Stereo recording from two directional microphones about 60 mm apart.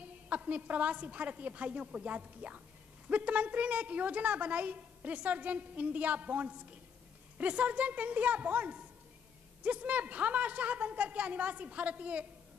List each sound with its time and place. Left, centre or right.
0.0 s a woman's voice: right